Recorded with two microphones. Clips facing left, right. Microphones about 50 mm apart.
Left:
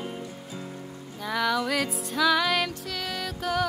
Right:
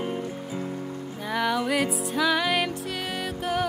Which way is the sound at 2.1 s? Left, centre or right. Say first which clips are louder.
Left 1 dB; centre.